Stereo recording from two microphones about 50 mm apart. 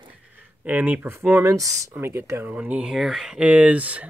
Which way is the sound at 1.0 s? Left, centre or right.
Right.